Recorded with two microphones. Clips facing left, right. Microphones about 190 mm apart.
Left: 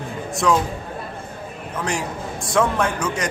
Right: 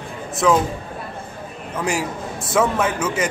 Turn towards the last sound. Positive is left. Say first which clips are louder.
# right 2 dB
turn(degrees=-5)  # may be behind; listen again after turning